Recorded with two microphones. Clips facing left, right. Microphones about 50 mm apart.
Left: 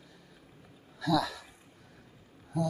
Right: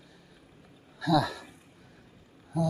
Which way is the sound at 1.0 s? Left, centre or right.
Right.